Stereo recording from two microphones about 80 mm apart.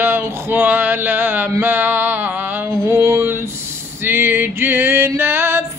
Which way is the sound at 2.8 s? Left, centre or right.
Right.